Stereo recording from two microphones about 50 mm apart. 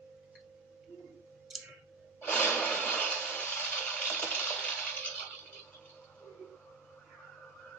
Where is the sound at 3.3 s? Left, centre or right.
Left.